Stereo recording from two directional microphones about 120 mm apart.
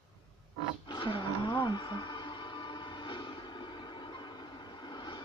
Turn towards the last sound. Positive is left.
turn(degrees=40)  # may be behind; listen again after turning